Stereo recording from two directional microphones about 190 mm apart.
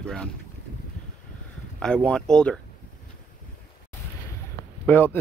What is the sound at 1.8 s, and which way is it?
Speech, 5° left (ahead or behind).